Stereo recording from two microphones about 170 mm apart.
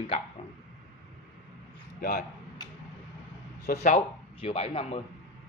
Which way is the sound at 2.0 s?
60° left (ahead or behind).